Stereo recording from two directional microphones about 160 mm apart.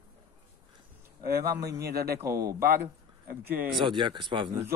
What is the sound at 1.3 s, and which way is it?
Speech, 70° right (ahead or behind).